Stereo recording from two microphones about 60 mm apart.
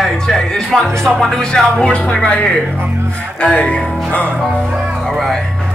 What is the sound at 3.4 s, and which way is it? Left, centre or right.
Speech, centre.